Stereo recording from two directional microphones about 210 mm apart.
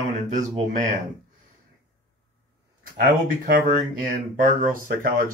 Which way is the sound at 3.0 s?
40° right (ahead or behind).